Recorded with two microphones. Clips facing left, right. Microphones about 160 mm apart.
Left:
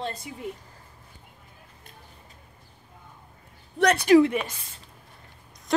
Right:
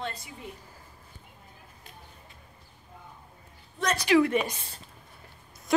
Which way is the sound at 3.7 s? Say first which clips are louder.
Left 7 dB; 70° left (ahead or behind).